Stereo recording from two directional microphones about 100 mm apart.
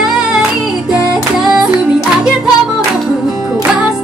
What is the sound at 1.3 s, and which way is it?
Music, 5° right (ahead or behind).